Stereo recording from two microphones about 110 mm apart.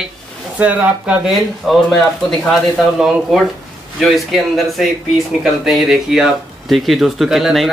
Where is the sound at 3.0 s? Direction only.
Centre (ahead or behind).